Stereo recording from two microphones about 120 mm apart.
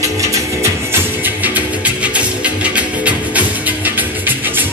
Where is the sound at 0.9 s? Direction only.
15° right (ahead or behind).